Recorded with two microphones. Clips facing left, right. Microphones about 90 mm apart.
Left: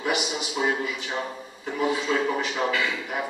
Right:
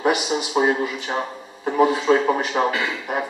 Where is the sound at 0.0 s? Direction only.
40° right (ahead or behind).